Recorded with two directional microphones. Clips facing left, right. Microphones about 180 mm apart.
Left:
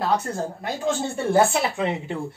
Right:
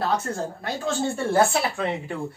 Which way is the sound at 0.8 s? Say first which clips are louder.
Left 1 dB; 20° left (ahead or behind).